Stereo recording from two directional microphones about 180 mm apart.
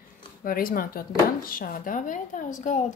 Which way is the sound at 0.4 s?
50° left (ahead or behind).